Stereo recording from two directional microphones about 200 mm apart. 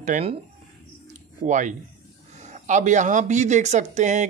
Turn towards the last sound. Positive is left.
turn(degrees=-35)  # may be behind; listen again after turning